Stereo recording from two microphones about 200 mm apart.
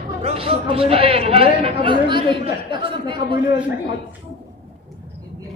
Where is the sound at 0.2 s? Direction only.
30° right (ahead or behind).